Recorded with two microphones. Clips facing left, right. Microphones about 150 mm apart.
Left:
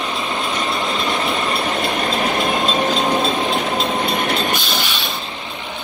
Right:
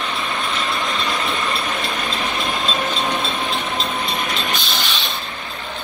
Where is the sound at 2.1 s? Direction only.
45° left (ahead or behind).